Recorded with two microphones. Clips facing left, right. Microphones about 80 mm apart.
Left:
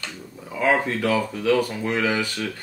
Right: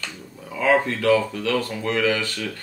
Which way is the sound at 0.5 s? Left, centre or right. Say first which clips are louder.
Right 1 dB; centre.